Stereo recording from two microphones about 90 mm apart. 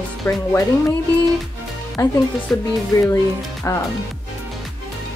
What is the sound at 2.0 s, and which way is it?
Speech, 35° left (ahead or behind).